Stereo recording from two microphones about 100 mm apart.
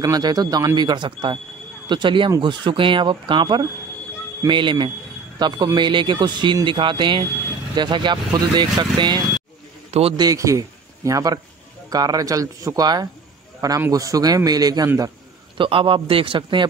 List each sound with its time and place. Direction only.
0.0 s speech: 40° right (ahead or behind)
9.8 s a sound: 90° right
10.1 s a man's voice: 35° right (ahead or behind)
13.6 s a man's voice: 30° right (ahead or behind)
15.5 s a man's voice: 60° right (ahead or behind)